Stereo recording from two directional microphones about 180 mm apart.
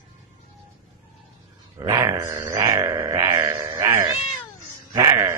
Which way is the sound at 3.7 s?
15° right (ahead or behind).